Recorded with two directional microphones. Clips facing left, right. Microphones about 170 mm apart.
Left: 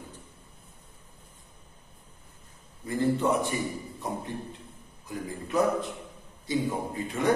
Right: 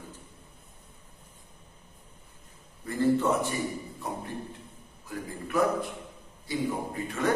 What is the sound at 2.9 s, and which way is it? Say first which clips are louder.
Speech: right 1 dB; 15° left (ahead or behind).